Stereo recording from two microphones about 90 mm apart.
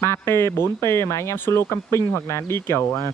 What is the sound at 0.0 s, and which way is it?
Speech, 30° left (ahead or behind).